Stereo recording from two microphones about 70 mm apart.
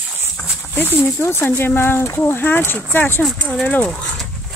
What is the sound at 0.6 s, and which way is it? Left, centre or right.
Speech, left.